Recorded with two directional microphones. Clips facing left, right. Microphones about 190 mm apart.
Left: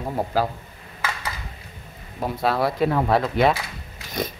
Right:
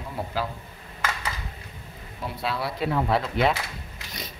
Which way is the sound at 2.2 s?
45° left (ahead or behind).